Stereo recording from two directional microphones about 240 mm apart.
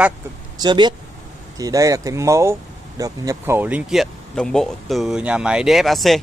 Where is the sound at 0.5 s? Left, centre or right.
Centre.